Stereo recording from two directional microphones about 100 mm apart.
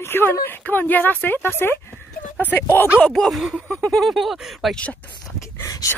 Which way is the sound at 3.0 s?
Centre (ahead or behind).